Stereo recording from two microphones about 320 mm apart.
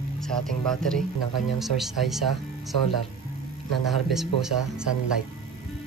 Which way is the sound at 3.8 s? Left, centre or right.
Centre.